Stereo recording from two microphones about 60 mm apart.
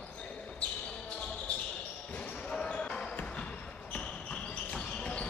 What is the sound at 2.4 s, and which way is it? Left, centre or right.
Basketball bounce, centre.